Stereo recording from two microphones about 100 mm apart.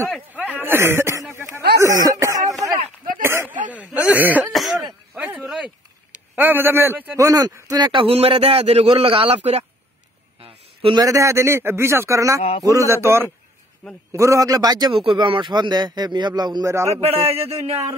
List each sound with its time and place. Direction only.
0.3 s speech: 15° right (ahead or behind)
1.3 s a sound: 30° right (ahead or behind)
3.9 s cough: 15° right (ahead or behind)
4.5 s throat clearing: centre (ahead or behind)
5.1 s a sound: 15° right (ahead or behind)
5.4 s a sound: centre (ahead or behind)
6.1 s a man's voice: 15° right (ahead or behind)
7.2 s speech: 35° right (ahead or behind)
8.1 s a man's voice: 75° right (ahead or behind)
10.4 s a sound: 65° right (ahead or behind)
11.0 s a man's voice: 30° right (ahead or behind)
15.0 s a man's voice: 60° right (ahead or behind); by 16.7 s 45° right (ahead or behind)
16.7 s a man's voice: 30° right (ahead or behind)
17.0 s speech: 85° right